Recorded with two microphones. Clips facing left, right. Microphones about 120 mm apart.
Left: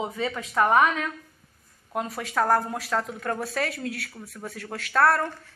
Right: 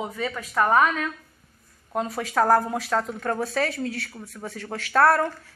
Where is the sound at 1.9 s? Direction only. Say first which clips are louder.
Right 3 dB; centre (ahead or behind).